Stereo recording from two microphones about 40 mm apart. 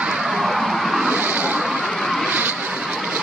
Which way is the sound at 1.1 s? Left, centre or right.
Right.